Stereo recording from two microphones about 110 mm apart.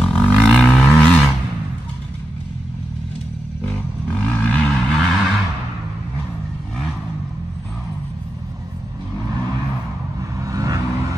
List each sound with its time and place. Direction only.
0.0 s wild animals: 10° left (ahead or behind)
3.6 s vehicle: 15° left (ahead or behind)
10.4 s vehicle: 30° right (ahead or behind)